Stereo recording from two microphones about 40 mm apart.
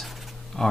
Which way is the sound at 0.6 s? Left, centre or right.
Centre.